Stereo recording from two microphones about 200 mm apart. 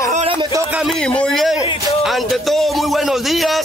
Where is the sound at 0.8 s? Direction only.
Centre (ahead or behind).